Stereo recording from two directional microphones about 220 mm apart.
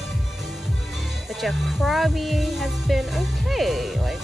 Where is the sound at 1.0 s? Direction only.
Centre (ahead or behind).